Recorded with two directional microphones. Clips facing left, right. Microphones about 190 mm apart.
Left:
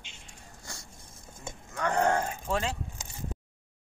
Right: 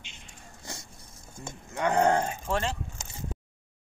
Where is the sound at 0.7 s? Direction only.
20° right (ahead or behind).